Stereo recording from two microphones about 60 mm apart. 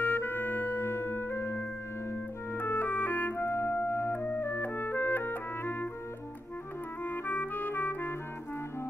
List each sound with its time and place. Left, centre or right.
0.0 s music: left
3.4 s music: left
7.1 s clarinet: left